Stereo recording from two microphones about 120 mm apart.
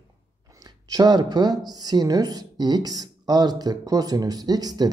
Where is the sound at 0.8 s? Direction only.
35° right (ahead or behind).